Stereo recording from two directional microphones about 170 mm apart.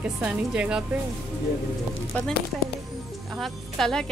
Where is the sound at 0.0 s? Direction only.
5° right (ahead or behind).